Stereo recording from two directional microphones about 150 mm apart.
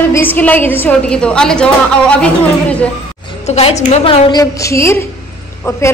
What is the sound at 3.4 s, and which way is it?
A woman's voice, 45° left (ahead or behind).